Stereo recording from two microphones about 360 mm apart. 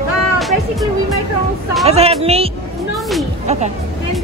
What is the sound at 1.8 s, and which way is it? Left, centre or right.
Speech, centre.